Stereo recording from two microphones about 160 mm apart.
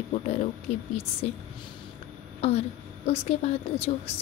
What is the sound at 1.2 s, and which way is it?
A woman's voice, 40° left (ahead or behind).